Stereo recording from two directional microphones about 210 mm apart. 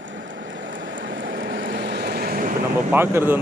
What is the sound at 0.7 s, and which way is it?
Vehicle, 65° right (ahead or behind).